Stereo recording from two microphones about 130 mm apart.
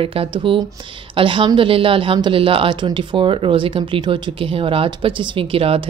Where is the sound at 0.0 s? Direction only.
45° right (ahead or behind).